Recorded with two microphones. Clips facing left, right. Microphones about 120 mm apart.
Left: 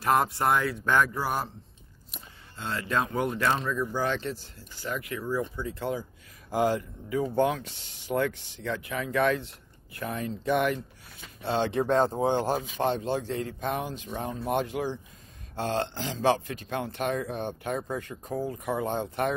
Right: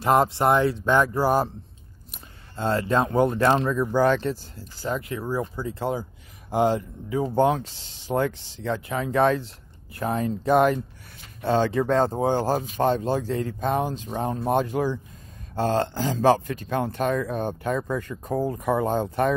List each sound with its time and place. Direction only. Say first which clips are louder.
0.0 s speech: right 5 dB; 25° right (ahead or behind)
1.1 s speech: right 9 dB; 35° right (ahead or behind)
2.5 s speech: right 7 dB; 40° right (ahead or behind)
3.6 s speech: right 8 dB; 55° right (ahead or behind); by 19.3 s 40° right (ahead or behind)